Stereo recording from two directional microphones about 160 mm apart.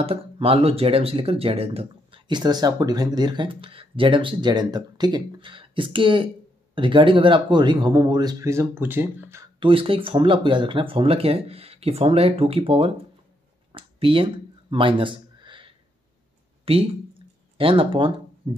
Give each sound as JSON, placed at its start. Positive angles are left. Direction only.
{"t": 0.0, "sound": "speech", "side_deg": -35}
{"t": 9.6, "sound": "speech", "side_deg": -35}
{"t": 13.7, "sound": "a sound", "side_deg": -35}
{"t": 16.7, "sound": "speech", "side_deg": -35}